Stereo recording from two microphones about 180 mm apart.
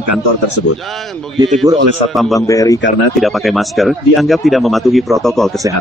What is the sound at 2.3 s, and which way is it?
Speech, 20° left (ahead or behind).